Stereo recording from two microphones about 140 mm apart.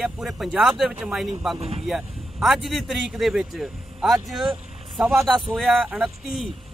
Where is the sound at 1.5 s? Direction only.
45° right (ahead or behind).